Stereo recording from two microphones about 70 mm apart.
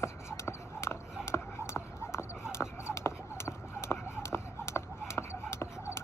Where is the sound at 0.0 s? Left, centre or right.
Left.